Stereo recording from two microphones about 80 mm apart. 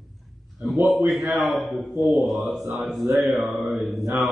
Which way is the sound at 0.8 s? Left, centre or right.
Centre.